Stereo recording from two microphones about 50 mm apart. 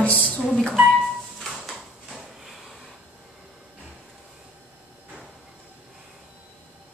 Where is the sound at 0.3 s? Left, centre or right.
Centre.